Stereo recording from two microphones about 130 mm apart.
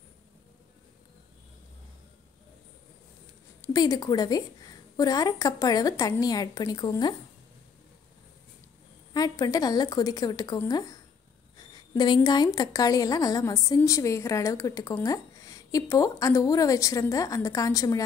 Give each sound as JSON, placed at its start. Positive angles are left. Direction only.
{"t": 3.7, "sound": "a woman's voice", "side_deg": 30}
{"t": 9.1, "sound": "a woman's voice", "side_deg": 30}